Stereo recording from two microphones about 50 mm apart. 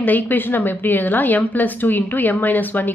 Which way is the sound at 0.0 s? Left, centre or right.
Left.